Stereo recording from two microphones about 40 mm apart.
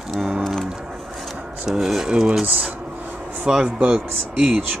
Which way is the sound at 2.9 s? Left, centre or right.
Right.